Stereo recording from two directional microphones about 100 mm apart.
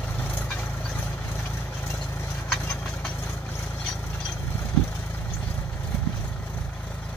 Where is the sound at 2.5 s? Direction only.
10° left (ahead or behind).